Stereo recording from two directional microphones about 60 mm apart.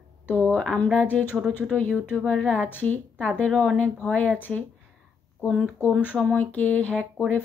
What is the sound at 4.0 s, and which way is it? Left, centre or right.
Speech, left.